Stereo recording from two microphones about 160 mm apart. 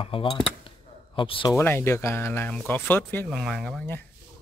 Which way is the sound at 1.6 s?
15° left (ahead or behind).